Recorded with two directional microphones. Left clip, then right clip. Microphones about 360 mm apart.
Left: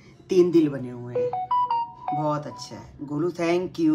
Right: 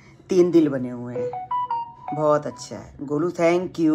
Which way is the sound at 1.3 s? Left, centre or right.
Left.